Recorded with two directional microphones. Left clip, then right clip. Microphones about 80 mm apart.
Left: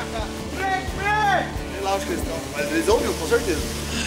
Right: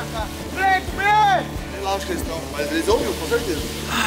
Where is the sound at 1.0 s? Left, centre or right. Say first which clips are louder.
Right 5 dB; centre.